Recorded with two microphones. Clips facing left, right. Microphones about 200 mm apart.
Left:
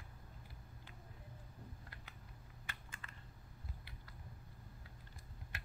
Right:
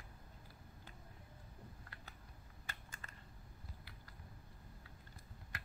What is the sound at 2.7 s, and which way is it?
Typing, 40° right (ahead or behind).